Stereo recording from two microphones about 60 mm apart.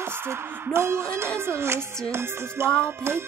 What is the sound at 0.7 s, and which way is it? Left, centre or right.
Music, right.